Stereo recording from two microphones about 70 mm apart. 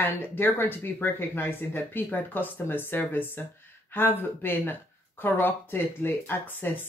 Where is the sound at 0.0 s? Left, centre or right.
Left.